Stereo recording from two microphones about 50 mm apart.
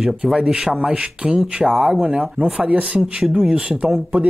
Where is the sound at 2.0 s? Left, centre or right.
Right.